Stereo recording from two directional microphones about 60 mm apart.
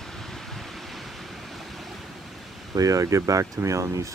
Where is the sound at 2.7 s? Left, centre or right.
Right.